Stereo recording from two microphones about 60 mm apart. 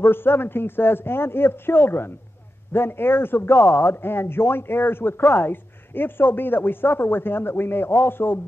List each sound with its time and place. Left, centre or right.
0.0 s a man's voice: left